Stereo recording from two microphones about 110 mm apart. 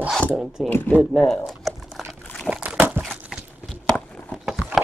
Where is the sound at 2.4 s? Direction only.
10° right (ahead or behind).